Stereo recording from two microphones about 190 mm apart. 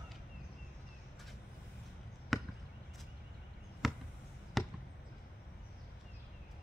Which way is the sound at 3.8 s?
Centre (ahead or behind).